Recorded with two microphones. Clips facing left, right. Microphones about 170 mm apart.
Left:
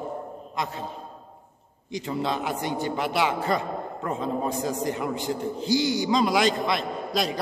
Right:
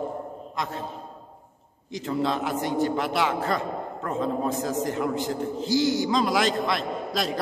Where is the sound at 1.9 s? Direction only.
Centre (ahead or behind).